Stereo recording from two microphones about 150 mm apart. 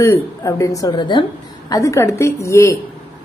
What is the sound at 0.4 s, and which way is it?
A woman's voice, 25° left (ahead or behind).